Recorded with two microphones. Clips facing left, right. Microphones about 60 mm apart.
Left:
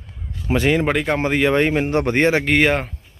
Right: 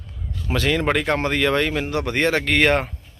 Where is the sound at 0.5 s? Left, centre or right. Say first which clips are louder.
Left 4 dB; left.